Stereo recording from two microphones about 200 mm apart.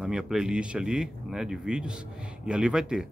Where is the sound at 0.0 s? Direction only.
5° right (ahead or behind).